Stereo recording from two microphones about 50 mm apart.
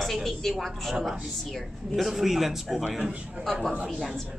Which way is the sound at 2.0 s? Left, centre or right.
Centre.